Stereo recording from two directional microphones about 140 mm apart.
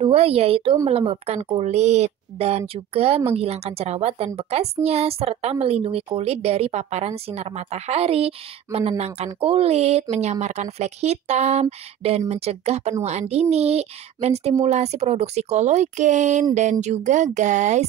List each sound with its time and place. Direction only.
0.0 s a woman's voice: 45° right (ahead or behind); by 17.8 s 60° right (ahead or behind)